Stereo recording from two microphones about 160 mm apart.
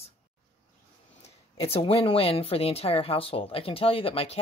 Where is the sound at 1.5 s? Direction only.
35° left (ahead or behind).